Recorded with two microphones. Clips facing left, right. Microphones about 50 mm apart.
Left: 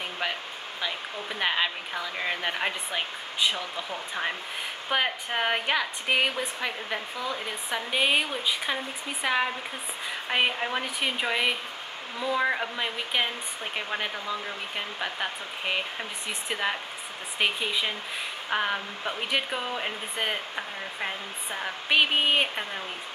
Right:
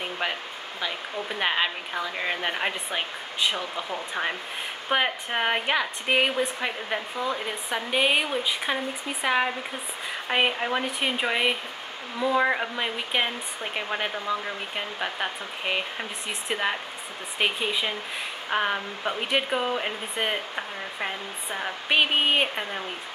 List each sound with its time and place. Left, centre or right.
1.4 s speech: centre
3.5 s a woman's voice: right
4.1 s a woman's voice: centre